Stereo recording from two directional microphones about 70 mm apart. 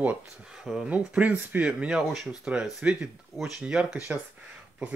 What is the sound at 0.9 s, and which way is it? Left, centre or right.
Speech, centre.